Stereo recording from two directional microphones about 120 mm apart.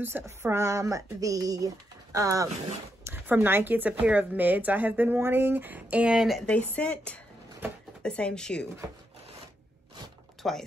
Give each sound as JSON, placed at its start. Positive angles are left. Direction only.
{"t": 0.0, "sound": "speech", "side_deg": -20}
{"t": 6.5, "sound": "speech", "side_deg": 10}
{"t": 10.4, "sound": "speech", "side_deg": 5}